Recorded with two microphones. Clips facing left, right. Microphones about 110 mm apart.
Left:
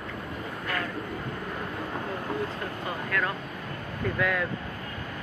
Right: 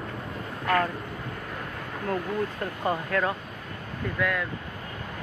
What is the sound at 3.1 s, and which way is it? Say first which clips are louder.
Speech: even; 30° right (ahead or behind).